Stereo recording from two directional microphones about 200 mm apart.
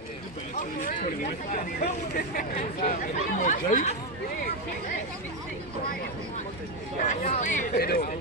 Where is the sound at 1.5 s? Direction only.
50° left (ahead or behind).